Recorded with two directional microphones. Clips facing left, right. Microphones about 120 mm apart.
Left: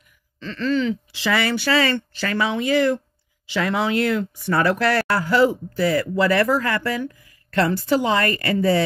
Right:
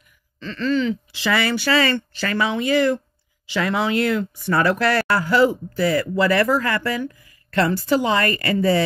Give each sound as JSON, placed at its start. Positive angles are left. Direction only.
{"t": 0.6, "sound": "a sound", "side_deg": 45}
{"t": 1.2, "sound": "speech", "side_deg": 30}
{"t": 1.7, "sound": "a woman's voice", "side_deg": 20}
{"t": 3.4, "sound": "speech", "side_deg": 40}
{"t": 6.4, "sound": "a woman's voice", "side_deg": 25}